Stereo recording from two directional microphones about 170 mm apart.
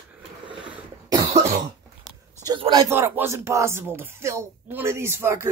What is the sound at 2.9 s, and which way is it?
Speech, 15° right (ahead or behind).